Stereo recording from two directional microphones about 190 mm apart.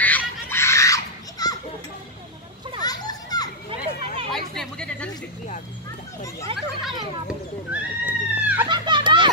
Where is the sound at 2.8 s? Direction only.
20° left (ahead or behind).